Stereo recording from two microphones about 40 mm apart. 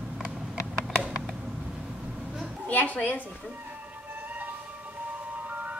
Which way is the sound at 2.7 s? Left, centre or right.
Left.